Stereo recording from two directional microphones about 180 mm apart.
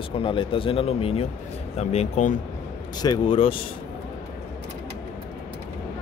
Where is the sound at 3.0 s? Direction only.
25° left (ahead or behind).